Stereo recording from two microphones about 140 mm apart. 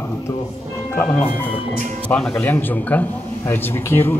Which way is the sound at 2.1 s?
5° left (ahead or behind).